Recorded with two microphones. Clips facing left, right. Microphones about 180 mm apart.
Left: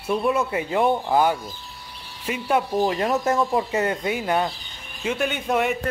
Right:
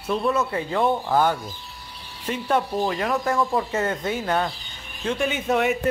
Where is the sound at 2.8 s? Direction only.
25° left (ahead or behind); by 5.7 s centre (ahead or behind).